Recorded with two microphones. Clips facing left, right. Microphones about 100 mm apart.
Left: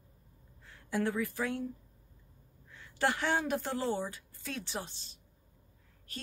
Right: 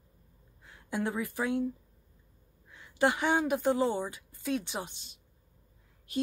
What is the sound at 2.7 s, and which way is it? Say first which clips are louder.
A woman's voice: right 4 dB; 15° right (ahead or behind).